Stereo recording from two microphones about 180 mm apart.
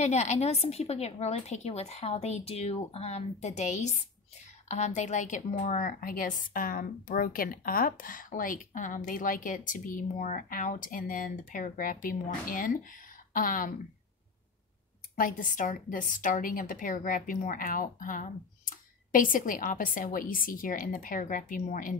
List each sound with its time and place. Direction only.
0.0 s a woman's voice: 40° left (ahead or behind)
15.1 s a woman's voice: 50° left (ahead or behind)